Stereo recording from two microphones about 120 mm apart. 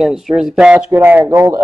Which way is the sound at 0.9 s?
15° right (ahead or behind).